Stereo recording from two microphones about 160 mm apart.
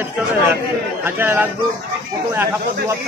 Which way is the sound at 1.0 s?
15° right (ahead or behind).